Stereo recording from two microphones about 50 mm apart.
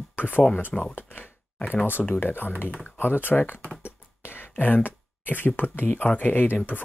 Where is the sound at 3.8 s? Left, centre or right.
Left.